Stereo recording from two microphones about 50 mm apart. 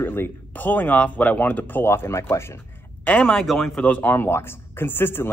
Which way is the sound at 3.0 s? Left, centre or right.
Left.